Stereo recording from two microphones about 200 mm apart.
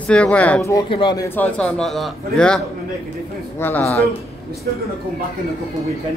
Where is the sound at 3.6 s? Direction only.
10° left (ahead or behind).